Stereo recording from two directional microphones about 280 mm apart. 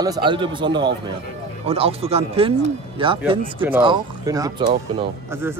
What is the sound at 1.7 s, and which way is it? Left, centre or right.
Speech, right.